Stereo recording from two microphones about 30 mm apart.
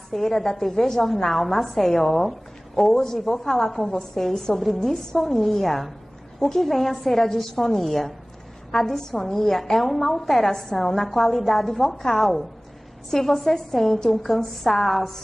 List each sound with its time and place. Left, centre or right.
0.1 s a woman's voice: centre
2.9 s a woman's voice: left
3.2 s a woman's voice: centre
6.4 s a woman's voice: centre
11.0 s a woman's voice: centre